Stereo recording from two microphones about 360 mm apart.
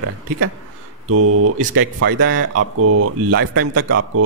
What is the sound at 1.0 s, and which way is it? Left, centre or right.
Speech, right.